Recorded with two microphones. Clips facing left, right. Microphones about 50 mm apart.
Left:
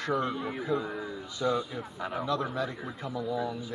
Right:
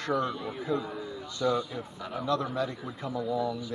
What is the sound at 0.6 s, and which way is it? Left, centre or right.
Speech, centre.